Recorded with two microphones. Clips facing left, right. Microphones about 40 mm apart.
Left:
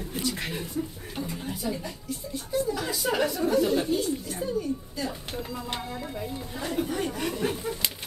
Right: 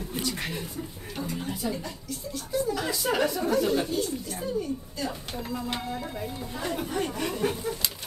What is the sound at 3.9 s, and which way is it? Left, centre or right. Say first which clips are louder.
Speech: left 2 dB; centre.